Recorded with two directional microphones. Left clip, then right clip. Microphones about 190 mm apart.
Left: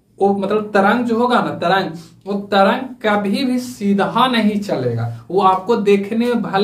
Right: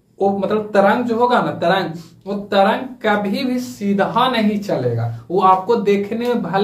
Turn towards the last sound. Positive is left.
turn(degrees=20)  # may be behind; listen again after turning